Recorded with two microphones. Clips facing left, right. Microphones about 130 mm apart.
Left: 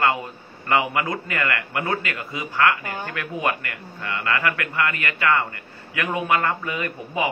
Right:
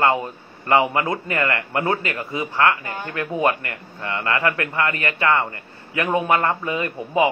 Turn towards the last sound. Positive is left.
turn(degrees=-20)  # may be behind; listen again after turning